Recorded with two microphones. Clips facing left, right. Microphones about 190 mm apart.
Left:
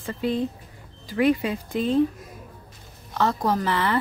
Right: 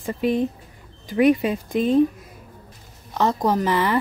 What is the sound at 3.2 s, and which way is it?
Speech, 20° right (ahead or behind).